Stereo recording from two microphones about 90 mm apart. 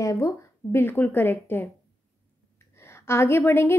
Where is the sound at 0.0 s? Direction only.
35° left (ahead or behind).